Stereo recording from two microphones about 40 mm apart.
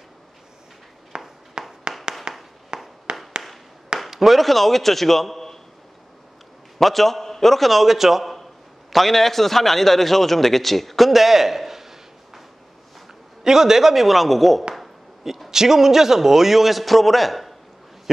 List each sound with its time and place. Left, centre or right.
1.1 s a sound: centre
4.1 s a man's voice: centre
6.8 s a man's voice: centre